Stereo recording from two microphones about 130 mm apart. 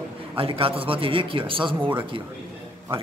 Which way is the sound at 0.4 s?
45° right (ahead or behind).